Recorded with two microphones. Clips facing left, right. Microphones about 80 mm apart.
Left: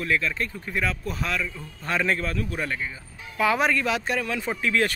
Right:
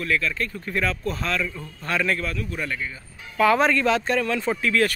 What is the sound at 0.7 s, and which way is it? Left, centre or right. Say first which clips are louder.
Speech: right 3 dB; centre.